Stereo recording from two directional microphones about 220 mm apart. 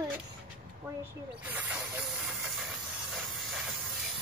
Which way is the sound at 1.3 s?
10° right (ahead or behind).